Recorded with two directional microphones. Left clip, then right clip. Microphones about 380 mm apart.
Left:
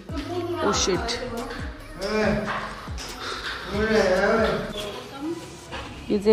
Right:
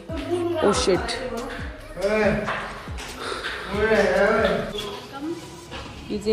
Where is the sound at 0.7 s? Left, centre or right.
Centre.